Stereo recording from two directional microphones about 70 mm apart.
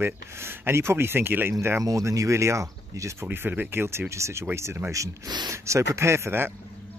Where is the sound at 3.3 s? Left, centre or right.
Right.